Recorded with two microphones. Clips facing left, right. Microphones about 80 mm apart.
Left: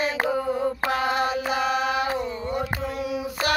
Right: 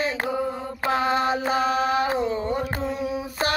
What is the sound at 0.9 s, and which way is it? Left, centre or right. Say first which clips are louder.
Mantra: right 5 dB; right.